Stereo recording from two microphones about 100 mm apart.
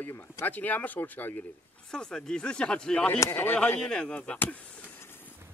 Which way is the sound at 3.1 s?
25° left (ahead or behind).